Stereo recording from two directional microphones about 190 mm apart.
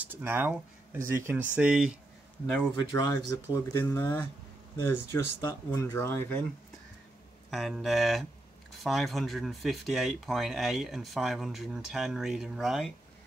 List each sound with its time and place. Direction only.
0.0 s speech: 10° right (ahead or behind)
2.8 s speech: 20° left (ahead or behind)
7.5 s speech: centre (ahead or behind)